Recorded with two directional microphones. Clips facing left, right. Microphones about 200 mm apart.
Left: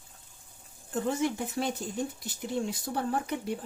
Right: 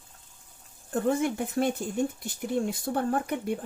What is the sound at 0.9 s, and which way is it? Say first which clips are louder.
Speech: right 3 dB; 55° right (ahead or behind).